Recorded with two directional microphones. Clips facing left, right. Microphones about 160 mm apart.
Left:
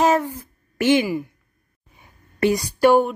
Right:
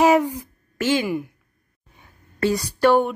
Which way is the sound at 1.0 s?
Centre (ahead or behind).